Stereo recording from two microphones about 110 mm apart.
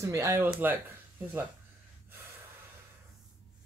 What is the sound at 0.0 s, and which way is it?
Speech, 25° right (ahead or behind).